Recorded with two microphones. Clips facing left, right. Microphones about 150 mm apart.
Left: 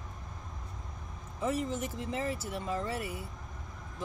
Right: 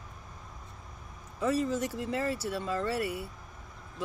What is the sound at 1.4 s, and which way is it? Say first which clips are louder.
Speech: right 4 dB; 25° left (ahead or behind).